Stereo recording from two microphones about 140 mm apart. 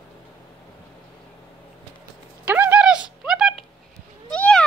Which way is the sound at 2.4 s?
10° right (ahead or behind).